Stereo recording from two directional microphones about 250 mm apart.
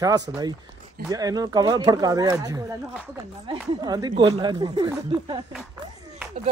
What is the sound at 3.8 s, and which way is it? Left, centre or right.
Speech, centre.